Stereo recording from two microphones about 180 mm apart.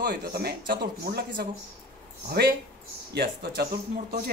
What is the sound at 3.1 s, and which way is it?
Speech, 65° right (ahead or behind).